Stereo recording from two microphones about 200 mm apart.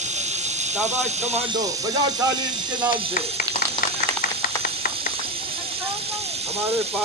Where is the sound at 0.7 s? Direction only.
35° right (ahead or behind).